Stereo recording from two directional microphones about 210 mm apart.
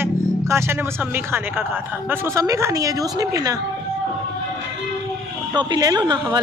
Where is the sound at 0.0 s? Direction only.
10° right (ahead or behind).